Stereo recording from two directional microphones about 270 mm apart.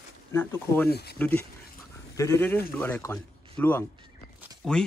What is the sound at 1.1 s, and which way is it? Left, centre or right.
Speech, centre.